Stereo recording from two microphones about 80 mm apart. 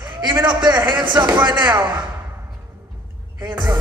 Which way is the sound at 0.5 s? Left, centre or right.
Right.